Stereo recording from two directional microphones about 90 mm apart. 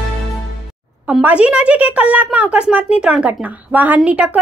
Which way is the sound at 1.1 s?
15° right (ahead or behind).